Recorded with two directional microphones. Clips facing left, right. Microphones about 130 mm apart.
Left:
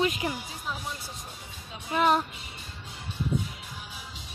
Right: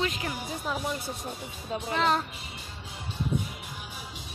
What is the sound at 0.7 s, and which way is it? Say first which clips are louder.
Speech: right 4 dB; 50° right (ahead or behind).